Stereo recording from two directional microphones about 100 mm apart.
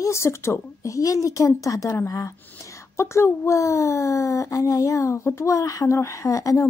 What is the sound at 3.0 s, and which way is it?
Speech, 30° left (ahead or behind).